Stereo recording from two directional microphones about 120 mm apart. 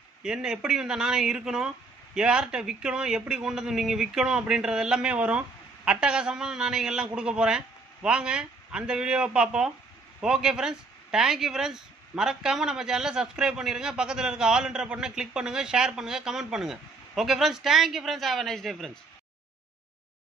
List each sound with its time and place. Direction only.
0.2 s speech: 5° right (ahead or behind)